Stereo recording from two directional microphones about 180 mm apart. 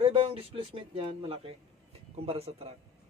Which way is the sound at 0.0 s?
30° right (ahead or behind).